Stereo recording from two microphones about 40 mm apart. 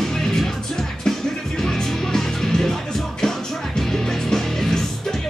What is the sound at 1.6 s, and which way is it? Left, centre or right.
Music, centre.